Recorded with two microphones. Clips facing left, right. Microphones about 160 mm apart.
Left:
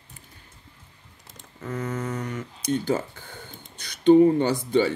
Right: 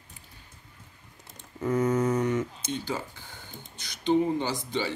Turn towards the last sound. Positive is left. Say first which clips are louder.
# left 9 dB
turn(degrees=55)  # may be behind; listen again after turning